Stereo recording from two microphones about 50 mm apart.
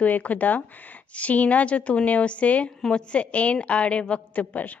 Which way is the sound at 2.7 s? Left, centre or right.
Centre.